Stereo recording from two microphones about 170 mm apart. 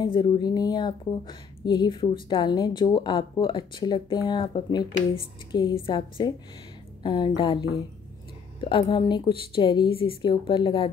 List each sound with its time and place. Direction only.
0.0 s speech: 30° left (ahead or behind)